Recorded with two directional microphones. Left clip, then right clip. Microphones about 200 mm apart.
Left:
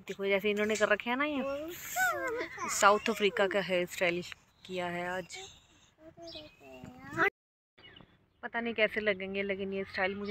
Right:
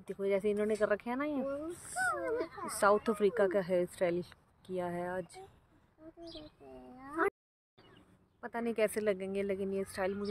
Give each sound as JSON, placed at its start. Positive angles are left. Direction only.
{"t": 0.0, "sound": "speech", "side_deg": 0}
{"t": 2.7, "sound": "speech", "side_deg": -15}
{"t": 6.7, "sound": "a sound", "side_deg": -20}
{"t": 8.4, "sound": "speech", "side_deg": -15}